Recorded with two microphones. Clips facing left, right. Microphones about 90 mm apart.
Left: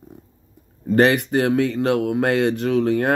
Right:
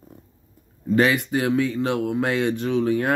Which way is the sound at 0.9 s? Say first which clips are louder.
Left 3 dB; 45° left (ahead or behind).